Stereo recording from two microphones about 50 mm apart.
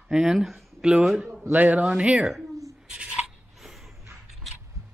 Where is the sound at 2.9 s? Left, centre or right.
Right.